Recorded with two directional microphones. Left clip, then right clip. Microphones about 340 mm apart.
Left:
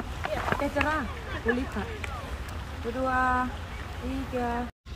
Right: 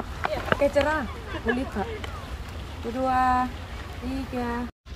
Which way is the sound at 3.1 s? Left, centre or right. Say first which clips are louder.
Right 4 dB; right.